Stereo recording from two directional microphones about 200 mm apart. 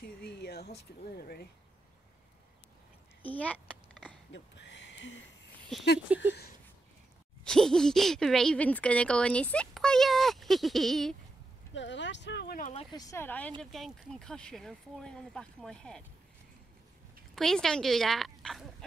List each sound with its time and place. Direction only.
0.0 s speech: 55° left (ahead or behind)
3.2 s a sound: 5° left (ahead or behind)
4.3 s a sound: 60° left (ahead or behind)
6.1 s speech: 5° right (ahead or behind)
7.4 s speech: 5° left (ahead or behind)
11.7 s speech: 65° left (ahead or behind); by 12.7 s 45° left (ahead or behind)
12.7 s speech: 20° left (ahead or behind); by 16.0 s 5° left (ahead or behind)
17.4 s speech: 5° left (ahead or behind)